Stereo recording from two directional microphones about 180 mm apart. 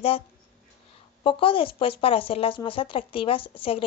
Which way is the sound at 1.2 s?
30° left (ahead or behind).